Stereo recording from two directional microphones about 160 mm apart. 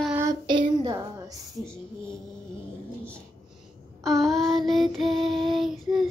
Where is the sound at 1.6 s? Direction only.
5° left (ahead or behind).